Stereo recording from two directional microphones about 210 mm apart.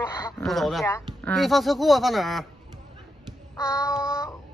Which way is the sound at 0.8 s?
10° left (ahead or behind).